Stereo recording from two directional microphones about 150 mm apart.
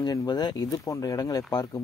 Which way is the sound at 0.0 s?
25° left (ahead or behind).